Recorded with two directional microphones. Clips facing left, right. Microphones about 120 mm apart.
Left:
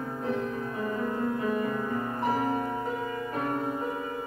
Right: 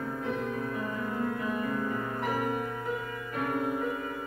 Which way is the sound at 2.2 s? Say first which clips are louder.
Left 4 dB; 30° left (ahead or behind).